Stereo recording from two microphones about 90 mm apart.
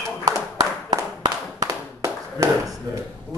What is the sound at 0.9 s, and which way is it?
Clapping, 50° right (ahead or behind).